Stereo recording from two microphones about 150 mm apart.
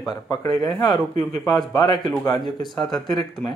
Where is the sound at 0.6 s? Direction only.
Centre (ahead or behind).